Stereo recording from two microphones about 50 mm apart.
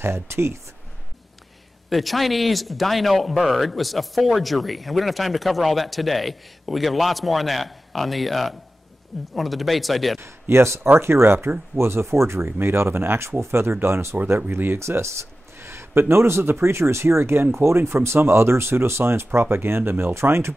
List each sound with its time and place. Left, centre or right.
0.0 s speech: right
1.9 s speech: centre
10.5 s speech: right
14.8 s speech: right
20.2 s speech: right